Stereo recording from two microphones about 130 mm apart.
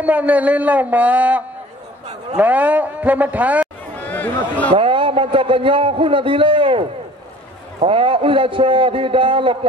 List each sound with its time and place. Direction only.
0.0 s speech: 10° right (ahead or behind)
3.9 s a man's voice: 15° left (ahead or behind)
4.7 s a man's voice: 40° right (ahead or behind)